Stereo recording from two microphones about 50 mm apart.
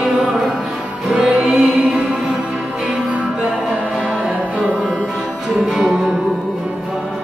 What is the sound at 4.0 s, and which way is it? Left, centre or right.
Music, centre.